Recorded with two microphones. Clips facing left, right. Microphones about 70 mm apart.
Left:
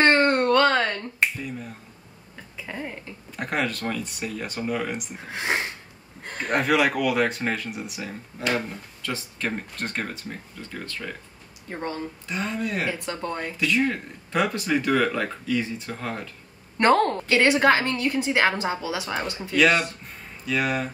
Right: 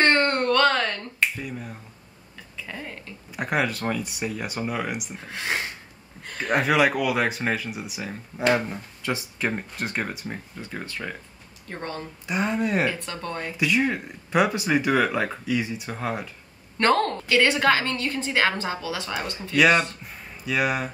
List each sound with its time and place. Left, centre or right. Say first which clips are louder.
0.0 s finger snapping: left 2 dB; centre
2.5 s a sound: left 2 dB; centre
3.3 s a sound: right 2 dB; centre
3.8 s speech: right 2 dB; centre
5.3 s a woman's voice: left 2 dB; left
6.5 s speech: right 1 dB; centre
8.5 s speech: right 1 dB; centre
11.7 s a woman's voice: left 2 dB; centre
12.3 s speech: right 5 dB; centre
12.8 s a woman's voice: right 1 dB; centre
13.6 s speech: right 1 dB; centre
16.7 s a woman's voice: left 2 dB; left
20.4 s speech: right 1 dB; centre